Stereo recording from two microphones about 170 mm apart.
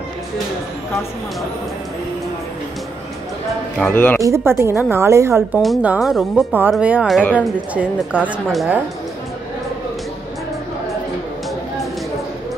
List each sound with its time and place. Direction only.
3.7 s speech: 5° left (ahead or behind)
4.2 s a woman's voice: 15° right (ahead or behind)
5.6 s a woman's voice: 5° right (ahead or behind)